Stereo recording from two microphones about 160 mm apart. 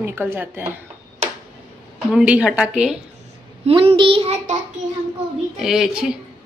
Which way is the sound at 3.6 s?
35° right (ahead or behind).